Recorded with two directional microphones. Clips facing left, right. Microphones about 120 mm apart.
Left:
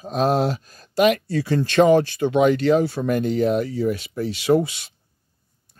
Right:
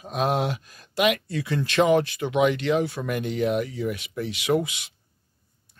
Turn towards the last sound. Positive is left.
turn(degrees=35)  # may be behind; listen again after turning